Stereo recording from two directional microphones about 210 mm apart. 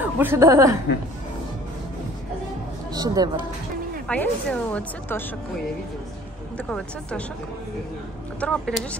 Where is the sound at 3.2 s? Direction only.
20° right (ahead or behind).